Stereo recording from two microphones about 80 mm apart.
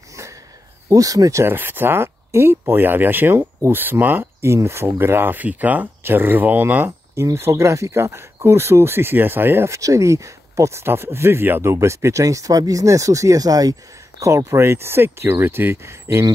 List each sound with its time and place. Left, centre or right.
0.1 s a sound: right
0.8 s speech: right
1.4 s speech: right
9.7 s speech: right
14.2 s speech: right